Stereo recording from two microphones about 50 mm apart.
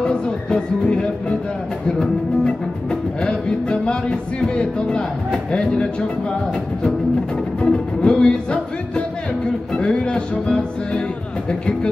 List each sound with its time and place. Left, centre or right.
0.0 s speech: centre
2.0 s music: centre
7.6 s music: centre